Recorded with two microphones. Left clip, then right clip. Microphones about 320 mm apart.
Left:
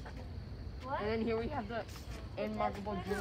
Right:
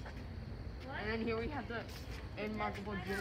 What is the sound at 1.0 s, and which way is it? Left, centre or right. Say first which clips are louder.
Speech: left 2 dB; left.